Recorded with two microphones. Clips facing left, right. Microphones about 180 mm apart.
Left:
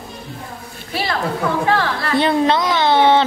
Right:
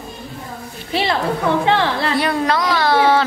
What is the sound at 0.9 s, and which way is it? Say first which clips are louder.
A woman's voice: right 3 dB; 25° right (ahead or behind).